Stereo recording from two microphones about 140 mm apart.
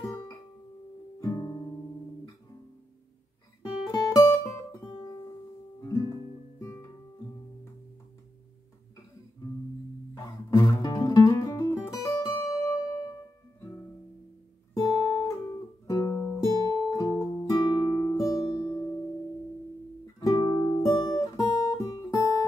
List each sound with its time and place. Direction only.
1.2 s music: 25° left (ahead or behind)
3.8 s music: 25° left (ahead or behind)
5.8 s guitar: 25° left (ahead or behind)
10.1 s music: 30° left (ahead or behind)
14.7 s guitar: 30° left (ahead or behind)
15.9 s music: 25° left (ahead or behind)
16.5 s guitar: 30° left (ahead or behind)
18.2 s music: 25° left (ahead or behind)
20.2 s music: 30° left (ahead or behind)
20.8 s guitar: 25° left (ahead or behind)